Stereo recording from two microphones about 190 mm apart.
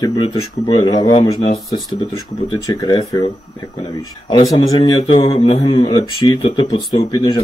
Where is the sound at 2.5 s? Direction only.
25° left (ahead or behind).